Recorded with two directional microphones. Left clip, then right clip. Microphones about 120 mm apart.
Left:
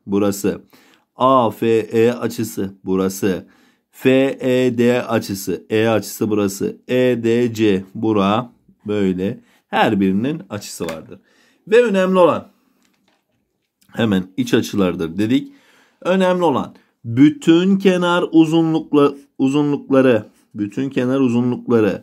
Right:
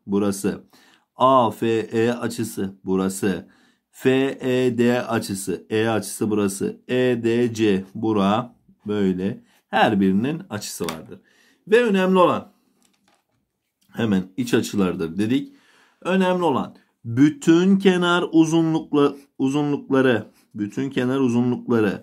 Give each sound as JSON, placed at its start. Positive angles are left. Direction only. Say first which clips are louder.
{"t": 0.1, "sound": "speech", "louder": "left 5 dB", "side_deg": 30}
{"t": 11.7, "sound": "speech", "louder": "left 4 dB", "side_deg": 25}
{"t": 13.8, "sound": "speech", "louder": "left 5 dB", "side_deg": 45}
{"t": 17.1, "sound": "speech", "louder": "left 4 dB", "side_deg": 15}
{"t": 17.8, "sound": "speech", "louder": "left 3 dB", "side_deg": 20}